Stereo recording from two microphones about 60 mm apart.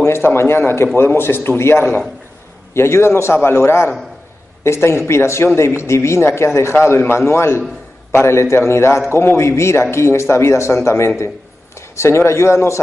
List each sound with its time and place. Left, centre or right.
0.0 s a man's voice: left